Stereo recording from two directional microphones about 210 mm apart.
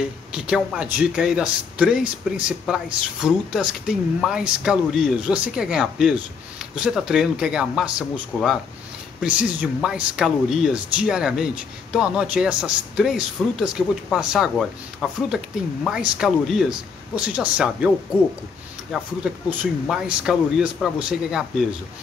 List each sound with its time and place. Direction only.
0.3 s a man's voice: 5° right (ahead or behind)
8.3 s speech: 5° left (ahead or behind)
9.2 s a man's voice: 5° right (ahead or behind)